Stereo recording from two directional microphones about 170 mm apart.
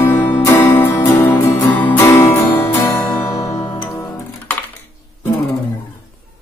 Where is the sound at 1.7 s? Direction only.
10° left (ahead or behind).